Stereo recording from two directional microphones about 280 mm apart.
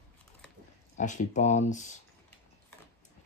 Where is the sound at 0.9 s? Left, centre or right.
Left.